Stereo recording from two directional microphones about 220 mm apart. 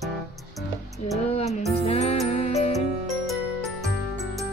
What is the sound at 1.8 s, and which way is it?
Music, 30° left (ahead or behind).